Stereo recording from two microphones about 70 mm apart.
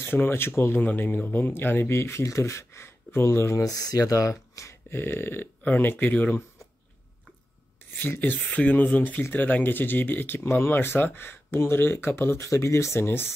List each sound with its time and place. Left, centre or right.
0.0 s speech: left
2.0 s speech: left
3.6 s speech: left
4.9 s speech: left
7.9 s speech: left